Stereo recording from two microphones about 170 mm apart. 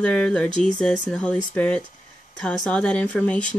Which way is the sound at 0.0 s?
5° left (ahead or behind).